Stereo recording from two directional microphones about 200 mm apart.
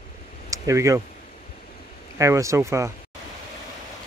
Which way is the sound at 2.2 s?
15° right (ahead or behind).